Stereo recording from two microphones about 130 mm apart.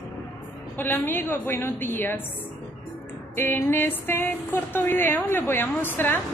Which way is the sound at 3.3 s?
15° left (ahead or behind).